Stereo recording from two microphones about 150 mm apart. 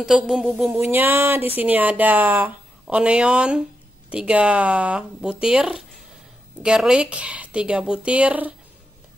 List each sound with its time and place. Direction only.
0.0 s speech: 5° right (ahead or behind)
0.7 s speech: 15° right (ahead or behind)